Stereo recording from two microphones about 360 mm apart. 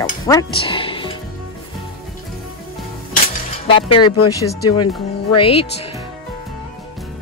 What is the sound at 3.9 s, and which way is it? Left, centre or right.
Speech, left.